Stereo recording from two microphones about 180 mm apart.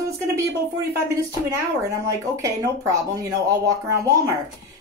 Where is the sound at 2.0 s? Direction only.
15° right (ahead or behind).